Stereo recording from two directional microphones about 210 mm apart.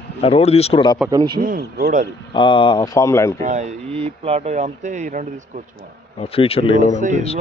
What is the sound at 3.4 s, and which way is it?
Speech, 35° right (ahead or behind).